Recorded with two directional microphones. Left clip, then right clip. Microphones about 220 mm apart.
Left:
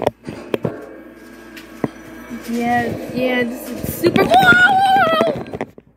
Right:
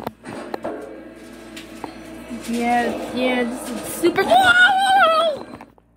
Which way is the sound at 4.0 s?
10° left (ahead or behind).